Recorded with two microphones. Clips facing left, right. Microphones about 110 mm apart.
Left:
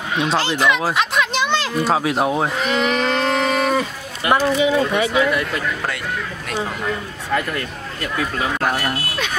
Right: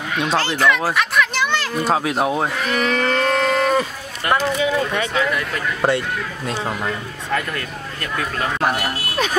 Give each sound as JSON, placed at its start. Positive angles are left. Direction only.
{"t": 0.4, "sound": "speech", "side_deg": 15}
{"t": 1.8, "sound": "speech", "side_deg": 0}
{"t": 2.5, "sound": "livestock", "side_deg": 20}
{"t": 4.3, "sound": "speech", "side_deg": 15}
{"t": 5.2, "sound": "speech", "side_deg": 5}
{"t": 5.8, "sound": "speech", "side_deg": -30}
{"t": 7.3, "sound": "speech", "side_deg": 5}